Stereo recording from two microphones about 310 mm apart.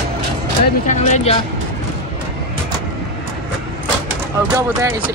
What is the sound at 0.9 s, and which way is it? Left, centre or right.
Speech, left.